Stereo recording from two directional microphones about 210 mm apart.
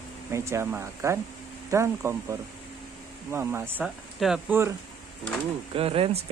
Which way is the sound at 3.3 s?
10° right (ahead or behind).